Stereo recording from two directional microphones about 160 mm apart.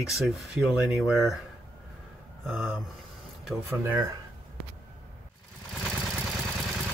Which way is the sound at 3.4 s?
10° right (ahead or behind).